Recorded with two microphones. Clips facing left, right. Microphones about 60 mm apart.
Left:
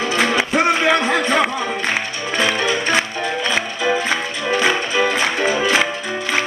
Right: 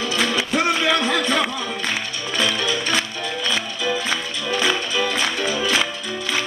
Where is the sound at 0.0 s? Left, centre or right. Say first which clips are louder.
Left 4 dB; left.